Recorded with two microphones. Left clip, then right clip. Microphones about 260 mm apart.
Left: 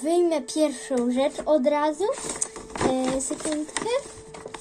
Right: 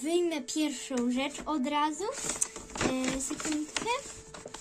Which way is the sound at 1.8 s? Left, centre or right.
Right.